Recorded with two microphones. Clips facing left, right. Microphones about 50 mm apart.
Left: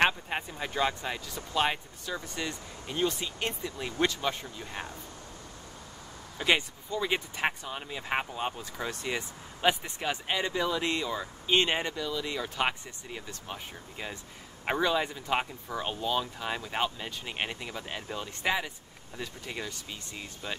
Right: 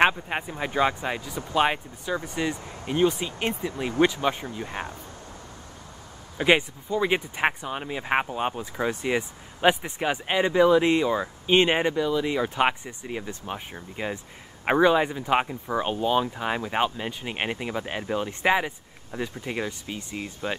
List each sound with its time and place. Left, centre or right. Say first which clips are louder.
0.0 s speech: right 5 dB; right
6.3 s speech: right 6 dB; right